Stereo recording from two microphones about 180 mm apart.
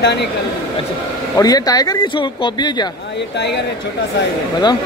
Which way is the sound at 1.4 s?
20° left (ahead or behind).